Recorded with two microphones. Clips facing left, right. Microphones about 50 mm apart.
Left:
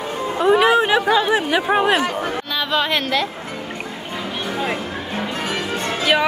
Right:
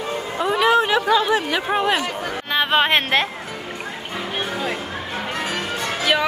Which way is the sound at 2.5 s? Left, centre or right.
Right.